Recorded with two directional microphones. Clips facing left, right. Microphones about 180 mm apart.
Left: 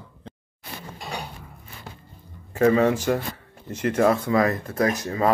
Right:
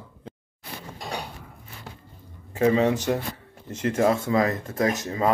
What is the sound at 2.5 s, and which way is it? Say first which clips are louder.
Speech: left 2 dB; 20° right (ahead or behind).